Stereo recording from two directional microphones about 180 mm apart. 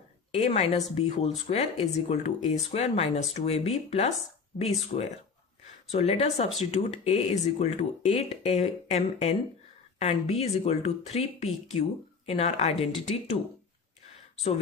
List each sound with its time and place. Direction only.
0.3 s speech: 35° left (ahead or behind)